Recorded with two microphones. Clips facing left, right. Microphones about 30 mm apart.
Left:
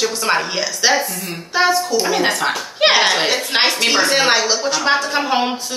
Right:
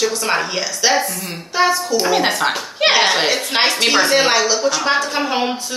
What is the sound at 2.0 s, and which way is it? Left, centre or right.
A woman's voice, centre.